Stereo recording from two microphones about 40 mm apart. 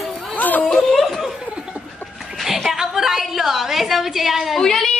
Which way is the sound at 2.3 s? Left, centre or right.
Centre.